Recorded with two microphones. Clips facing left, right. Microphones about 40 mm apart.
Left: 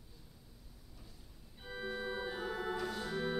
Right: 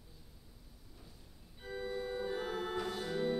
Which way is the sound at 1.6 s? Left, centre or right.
Centre.